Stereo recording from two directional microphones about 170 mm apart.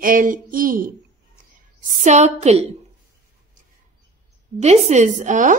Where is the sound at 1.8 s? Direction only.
45° right (ahead or behind).